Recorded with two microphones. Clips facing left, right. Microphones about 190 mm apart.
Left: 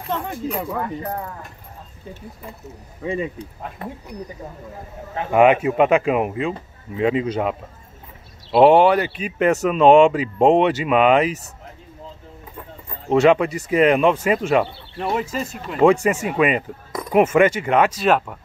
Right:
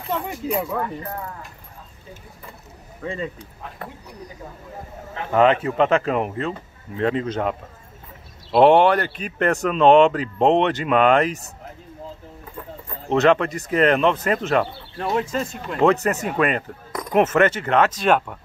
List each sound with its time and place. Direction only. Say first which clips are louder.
0.3 s speech: right 1 dB; 5° right (ahead or behind)
3.0 s speech: left 4 dB; 15° left (ahead or behind)
5.3 s speech: left 3 dB; 15° left (ahead or behind)
13.1 s speech: left 2 dB; 10° left (ahead or behind)